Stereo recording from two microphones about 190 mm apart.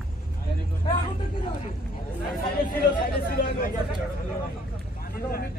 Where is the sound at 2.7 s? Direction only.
50° left (ahead or behind).